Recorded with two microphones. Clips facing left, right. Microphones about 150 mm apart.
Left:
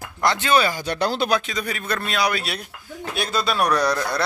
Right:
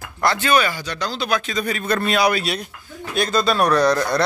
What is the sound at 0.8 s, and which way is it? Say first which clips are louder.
Speech: left 4 dB; 55° left (ahead or behind).